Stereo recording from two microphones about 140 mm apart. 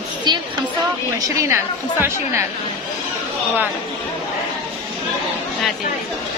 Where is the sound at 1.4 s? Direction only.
20° right (ahead or behind).